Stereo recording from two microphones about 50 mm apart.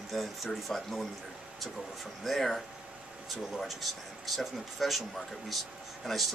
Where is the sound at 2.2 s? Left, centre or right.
Centre.